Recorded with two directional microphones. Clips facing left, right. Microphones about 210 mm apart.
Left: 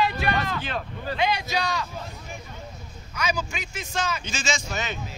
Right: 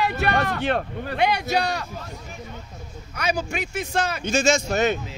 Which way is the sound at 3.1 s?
60° right (ahead or behind).